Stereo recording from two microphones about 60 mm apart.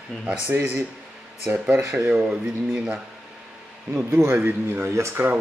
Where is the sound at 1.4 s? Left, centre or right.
Centre.